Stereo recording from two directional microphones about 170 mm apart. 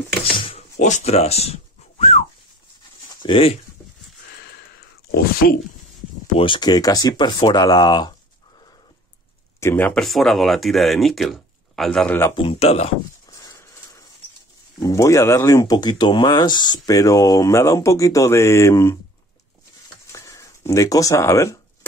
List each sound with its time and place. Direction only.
0.2 s a sound: 35° left (ahead or behind)
0.7 s a sound: 45° left (ahead or behind)
3.2 s speech: 30° left (ahead or behind)
5.2 s speech: 60° left (ahead or behind)
6.3 s speech: 30° left (ahead or behind)
9.6 s speech: 15° left (ahead or behind)
12.4 s speech: 35° left (ahead or behind)
13.3 s dog: 20° left (ahead or behind)
14.8 s speech: 20° left (ahead or behind)
20.1 s a sound: 15° left (ahead or behind)